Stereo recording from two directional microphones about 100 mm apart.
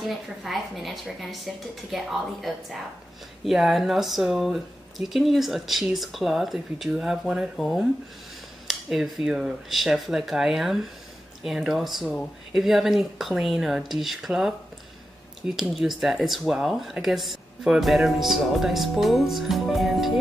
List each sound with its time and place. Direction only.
0.0 s speech: centre (ahead or behind)